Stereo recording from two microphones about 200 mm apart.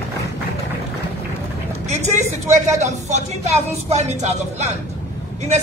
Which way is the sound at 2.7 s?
35° right (ahead or behind).